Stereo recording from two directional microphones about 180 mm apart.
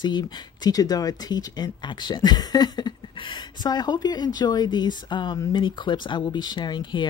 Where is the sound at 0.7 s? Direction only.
20° left (ahead or behind).